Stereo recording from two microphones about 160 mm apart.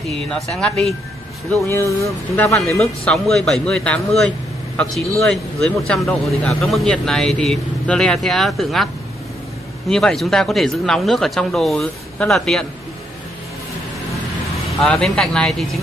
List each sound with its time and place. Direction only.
0.3 s speech: 5° left (ahead or behind)
1.7 s speech: 15° left (ahead or behind)
2.5 s speech: centre (ahead or behind)
9.8 s speech: 5° left (ahead or behind)
14.8 s speech: 5° left (ahead or behind)